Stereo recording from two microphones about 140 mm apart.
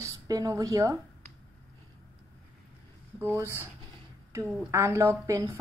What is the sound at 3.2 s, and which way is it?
Speech, 15° right (ahead or behind).